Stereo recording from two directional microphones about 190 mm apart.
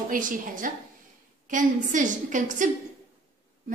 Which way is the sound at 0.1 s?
45° right (ahead or behind).